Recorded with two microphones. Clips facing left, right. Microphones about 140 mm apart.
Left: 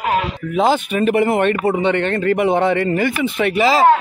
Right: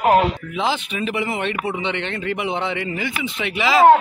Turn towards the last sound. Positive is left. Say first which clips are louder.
# left 2 dB
turn(degrees=40)  # may be behind; listen again after turning